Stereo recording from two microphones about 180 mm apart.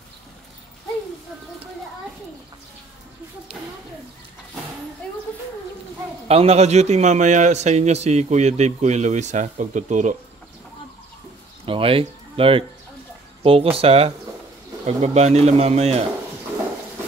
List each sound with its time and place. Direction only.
6.2 s a man's voice: 35° right (ahead or behind)
11.6 s a man's voice: 30° right (ahead or behind)